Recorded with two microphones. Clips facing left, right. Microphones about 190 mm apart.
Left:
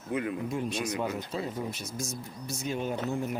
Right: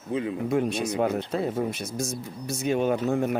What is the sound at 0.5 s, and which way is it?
Speech, 65° right (ahead or behind).